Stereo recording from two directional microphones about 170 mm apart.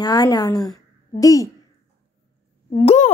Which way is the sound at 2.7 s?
40° left (ahead or behind).